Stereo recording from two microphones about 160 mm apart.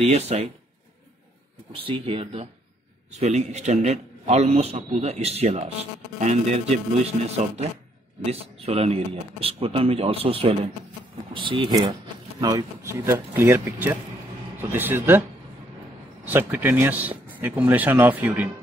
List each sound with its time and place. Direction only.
0.0 s speech: 40° right (ahead or behind)
1.9 s a man's voice: 35° right (ahead or behind); by 15.2 s 15° right (ahead or behind)
16.3 s speech: 10° right (ahead or behind)